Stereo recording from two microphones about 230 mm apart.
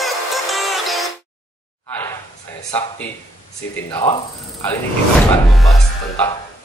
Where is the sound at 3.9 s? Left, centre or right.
Centre.